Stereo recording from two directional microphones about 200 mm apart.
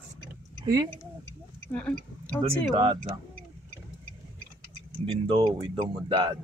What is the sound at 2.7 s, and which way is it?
Speech, 25° right (ahead or behind).